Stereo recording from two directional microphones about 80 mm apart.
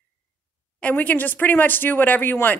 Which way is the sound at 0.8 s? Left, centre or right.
Centre.